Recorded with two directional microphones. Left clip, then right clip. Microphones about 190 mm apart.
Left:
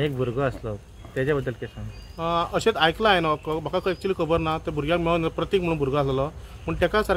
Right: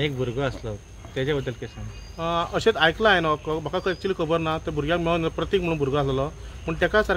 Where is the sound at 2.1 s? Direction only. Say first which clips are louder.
Left 1 dB; 10° left (ahead or behind).